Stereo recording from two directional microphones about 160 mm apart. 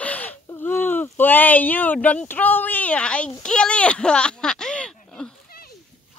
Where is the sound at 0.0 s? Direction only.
10° left (ahead or behind).